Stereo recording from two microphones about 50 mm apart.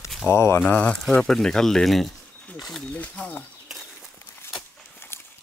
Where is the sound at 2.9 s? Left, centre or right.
Left.